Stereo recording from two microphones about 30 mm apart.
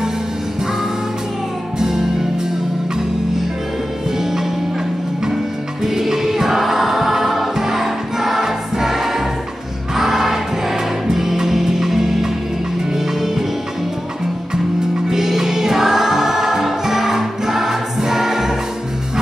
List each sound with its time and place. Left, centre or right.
1.8 s music: centre
4.2 s music: centre
7.5 s choir: centre
9.9 s music: centre
15.0 s music: centre